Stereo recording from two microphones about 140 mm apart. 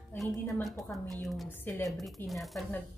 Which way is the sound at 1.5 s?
15° left (ahead or behind).